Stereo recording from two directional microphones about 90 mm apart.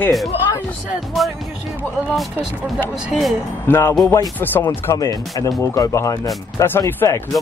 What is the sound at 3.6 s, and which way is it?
Speech, 25° left (ahead or behind).